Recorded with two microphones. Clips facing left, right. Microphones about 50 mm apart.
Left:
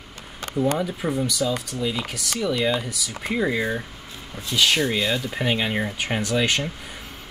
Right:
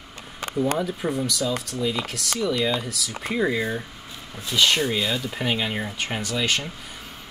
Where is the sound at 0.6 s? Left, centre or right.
Centre.